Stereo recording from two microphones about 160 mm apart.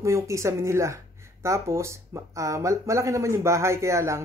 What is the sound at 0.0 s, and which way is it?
Speech, 20° right (ahead or behind).